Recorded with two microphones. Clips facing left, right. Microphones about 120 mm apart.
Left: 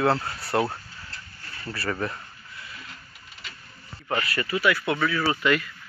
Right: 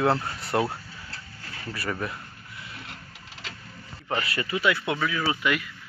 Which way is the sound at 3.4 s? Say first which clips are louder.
Right 3 dB; 90° right.